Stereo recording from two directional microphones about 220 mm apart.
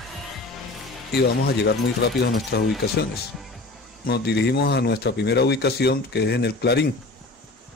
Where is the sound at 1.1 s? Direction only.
50° left (ahead or behind).